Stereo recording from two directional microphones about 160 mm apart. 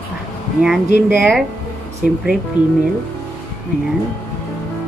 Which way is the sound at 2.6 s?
25° left (ahead or behind).